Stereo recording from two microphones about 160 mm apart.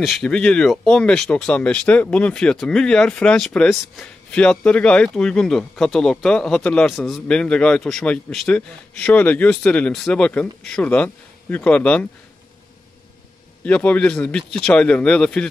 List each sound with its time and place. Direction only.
0.0 s speech: 5° left (ahead or behind)
13.7 s speech: 10° left (ahead or behind)